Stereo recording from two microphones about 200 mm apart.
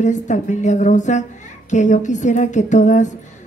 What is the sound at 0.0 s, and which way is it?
Speech, 35° left (ahead or behind).